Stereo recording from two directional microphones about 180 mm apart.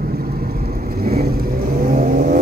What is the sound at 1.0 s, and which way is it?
Vehicle, 60° right (ahead or behind).